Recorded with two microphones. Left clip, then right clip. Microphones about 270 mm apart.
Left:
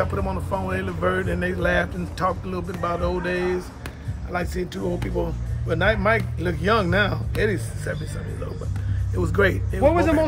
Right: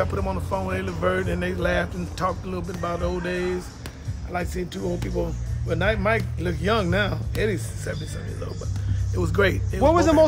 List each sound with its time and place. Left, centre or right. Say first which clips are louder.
0.0 s speech: even; centre
9.1 s speech: left 1 dB; centre